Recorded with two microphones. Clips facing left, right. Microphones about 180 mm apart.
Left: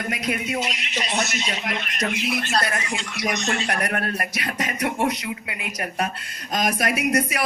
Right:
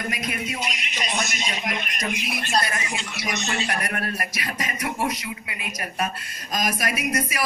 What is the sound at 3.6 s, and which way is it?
A man's voice, 60° left (ahead or behind).